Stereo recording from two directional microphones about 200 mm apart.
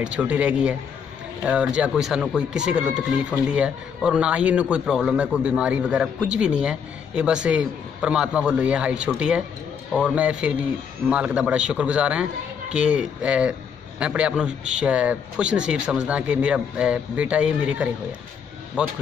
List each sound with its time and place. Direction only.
0.0 s a man's voice: 5° right (ahead or behind)